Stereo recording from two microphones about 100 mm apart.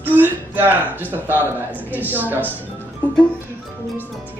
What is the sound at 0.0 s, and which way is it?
A woman's voice, 20° right (ahead or behind).